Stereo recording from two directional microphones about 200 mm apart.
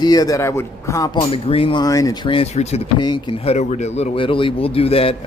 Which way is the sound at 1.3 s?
30° left (ahead or behind).